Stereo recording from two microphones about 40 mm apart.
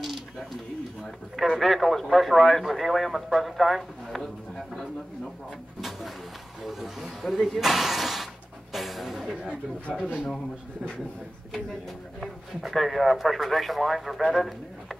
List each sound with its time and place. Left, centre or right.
0.0 s a sound: centre
1.0 s speech: centre
3.3 s a sound: centre
5.8 s speech: centre
8.7 s music: centre
9.3 s speech: right
12.2 s speech: centre